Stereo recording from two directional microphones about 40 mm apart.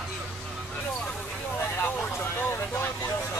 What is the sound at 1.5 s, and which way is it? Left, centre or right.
Vehicle, left.